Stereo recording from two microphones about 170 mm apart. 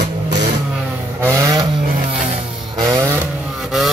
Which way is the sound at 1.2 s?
15° right (ahead or behind).